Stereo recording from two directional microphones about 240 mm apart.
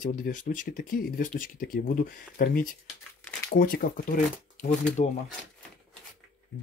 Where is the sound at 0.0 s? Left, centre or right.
Left.